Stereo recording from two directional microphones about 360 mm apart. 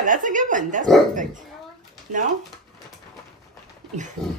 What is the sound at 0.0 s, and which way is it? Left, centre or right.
Speech, right.